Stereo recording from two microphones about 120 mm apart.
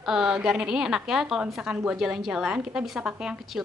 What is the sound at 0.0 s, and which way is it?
A woman's voice, 5° right (ahead or behind).